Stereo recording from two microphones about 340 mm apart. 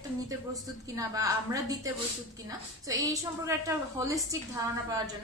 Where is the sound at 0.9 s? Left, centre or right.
Centre.